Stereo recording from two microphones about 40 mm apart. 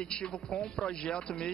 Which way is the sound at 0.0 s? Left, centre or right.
Left.